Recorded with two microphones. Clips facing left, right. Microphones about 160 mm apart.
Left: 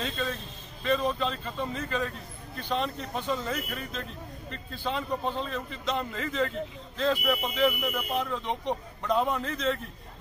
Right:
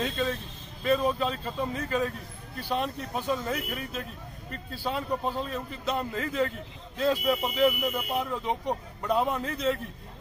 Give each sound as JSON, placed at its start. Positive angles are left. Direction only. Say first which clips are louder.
{"t": 0.8, "sound": "speech", "louder": "right 2 dB", "side_deg": -10}